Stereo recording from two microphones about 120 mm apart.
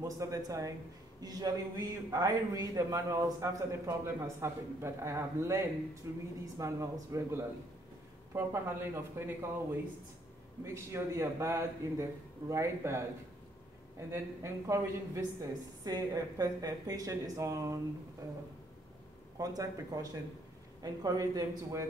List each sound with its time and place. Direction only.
0.0 s a man's voice: 30° right (ahead or behind)
14.1 s a man's voice: 25° right (ahead or behind)